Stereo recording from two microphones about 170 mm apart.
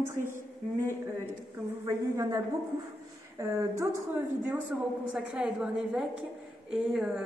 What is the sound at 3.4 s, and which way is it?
A woman's voice, 15° right (ahead or behind).